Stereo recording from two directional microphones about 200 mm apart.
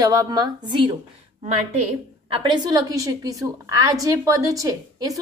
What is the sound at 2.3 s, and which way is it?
A woman's voice, 25° right (ahead or behind).